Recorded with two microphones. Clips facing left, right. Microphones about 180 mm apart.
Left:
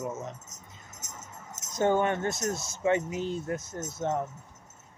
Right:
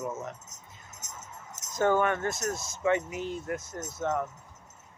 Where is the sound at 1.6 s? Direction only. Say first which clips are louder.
Even; 20° left (ahead or behind).